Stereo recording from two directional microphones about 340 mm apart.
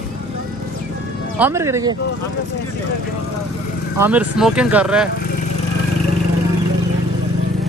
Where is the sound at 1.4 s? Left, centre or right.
Centre.